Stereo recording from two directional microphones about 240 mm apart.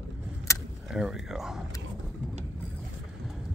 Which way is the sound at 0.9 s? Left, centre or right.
Centre.